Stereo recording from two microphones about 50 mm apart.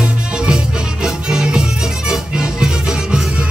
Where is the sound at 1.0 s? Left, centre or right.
Centre.